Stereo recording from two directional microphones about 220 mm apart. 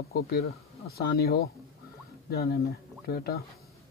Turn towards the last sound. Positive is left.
turn(degrees=45)  # may be behind; listen again after turning